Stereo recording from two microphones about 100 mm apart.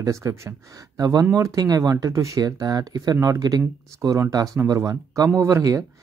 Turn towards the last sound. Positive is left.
turn(degrees=-35)  # may be behind; listen again after turning